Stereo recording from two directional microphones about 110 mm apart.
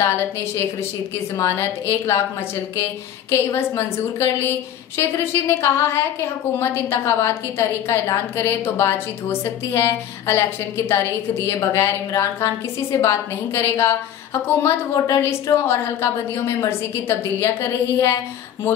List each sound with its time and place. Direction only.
0.0 s a woman's voice: 25° left (ahead or behind)
3.3 s a woman's voice: 25° left (ahead or behind)